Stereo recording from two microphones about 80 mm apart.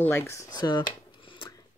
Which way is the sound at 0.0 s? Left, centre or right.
Left.